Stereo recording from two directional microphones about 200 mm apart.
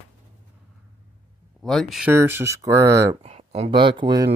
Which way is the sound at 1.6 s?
Centre (ahead or behind).